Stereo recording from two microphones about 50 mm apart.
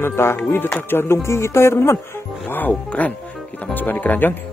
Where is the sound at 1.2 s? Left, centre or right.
Left.